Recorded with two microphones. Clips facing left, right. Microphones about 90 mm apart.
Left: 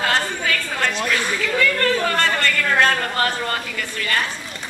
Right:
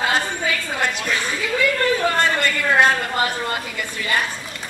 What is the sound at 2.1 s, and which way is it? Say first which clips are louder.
Speech: even; 15° right (ahead or behind).